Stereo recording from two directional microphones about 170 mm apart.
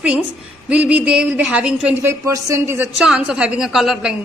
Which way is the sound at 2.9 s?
5° right (ahead or behind).